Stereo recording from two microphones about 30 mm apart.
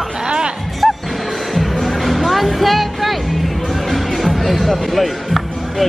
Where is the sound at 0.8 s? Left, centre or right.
Centre.